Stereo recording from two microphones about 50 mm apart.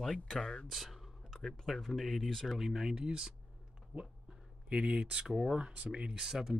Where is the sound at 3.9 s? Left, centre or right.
Right.